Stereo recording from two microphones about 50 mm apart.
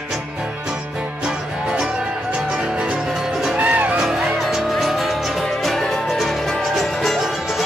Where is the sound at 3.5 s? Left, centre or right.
Right.